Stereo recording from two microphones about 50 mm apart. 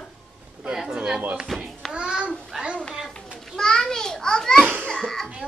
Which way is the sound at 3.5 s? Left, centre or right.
Centre.